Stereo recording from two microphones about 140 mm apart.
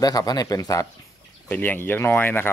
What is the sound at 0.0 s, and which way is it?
Speech, 25° left (ahead or behind).